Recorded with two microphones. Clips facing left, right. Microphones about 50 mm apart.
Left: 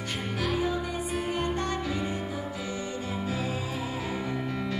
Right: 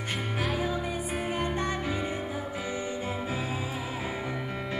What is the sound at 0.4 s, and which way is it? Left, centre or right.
Music, centre.